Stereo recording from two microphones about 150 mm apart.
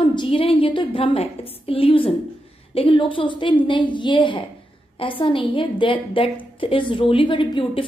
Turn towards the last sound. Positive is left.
turn(degrees=35)  # may be behind; listen again after turning